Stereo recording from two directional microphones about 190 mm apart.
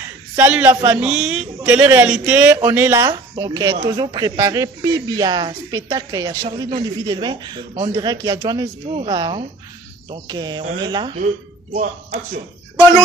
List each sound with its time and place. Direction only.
0.4 s speech: 10° right (ahead or behind)
11.7 s speech: 45° right (ahead or behind)